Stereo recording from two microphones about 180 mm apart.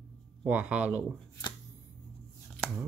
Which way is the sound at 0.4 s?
10° right (ahead or behind).